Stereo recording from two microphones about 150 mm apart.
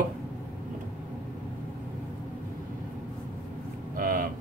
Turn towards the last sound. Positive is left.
turn(degrees=-65)  # may be behind; listen again after turning